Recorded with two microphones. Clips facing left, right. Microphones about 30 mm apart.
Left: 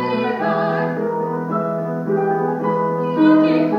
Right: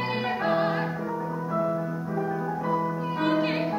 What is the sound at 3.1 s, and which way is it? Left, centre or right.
Music, centre.